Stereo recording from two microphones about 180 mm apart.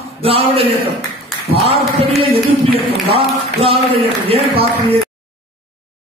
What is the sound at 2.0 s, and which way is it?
A man's voice, 30° right (ahead or behind).